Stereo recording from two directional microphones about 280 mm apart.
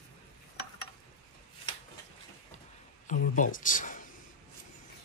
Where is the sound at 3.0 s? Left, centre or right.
Left.